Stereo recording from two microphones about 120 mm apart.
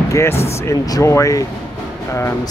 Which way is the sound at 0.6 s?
25° left (ahead or behind).